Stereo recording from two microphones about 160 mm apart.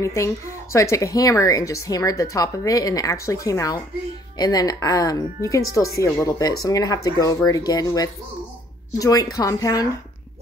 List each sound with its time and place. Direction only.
0.0 s speech: 20° left (ahead or behind)